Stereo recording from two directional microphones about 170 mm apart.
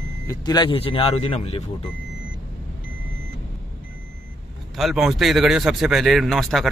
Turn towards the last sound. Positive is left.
turn(degrees=0)  # may be behind; listen again after turning